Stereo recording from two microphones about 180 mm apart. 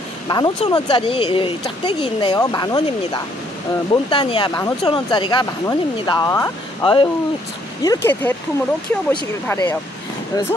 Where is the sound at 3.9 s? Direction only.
30° left (ahead or behind); by 8.4 s 10° left (ahead or behind).